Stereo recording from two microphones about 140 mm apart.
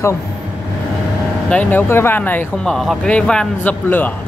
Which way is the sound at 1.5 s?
10° left (ahead or behind).